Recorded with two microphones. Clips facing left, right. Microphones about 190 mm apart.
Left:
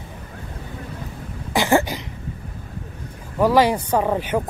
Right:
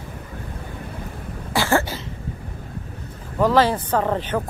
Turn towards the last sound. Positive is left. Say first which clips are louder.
# left 1 dB
turn(degrees=10)  # may be behind; listen again after turning